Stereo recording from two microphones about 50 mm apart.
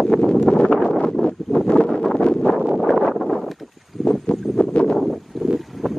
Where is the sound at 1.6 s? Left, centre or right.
Centre.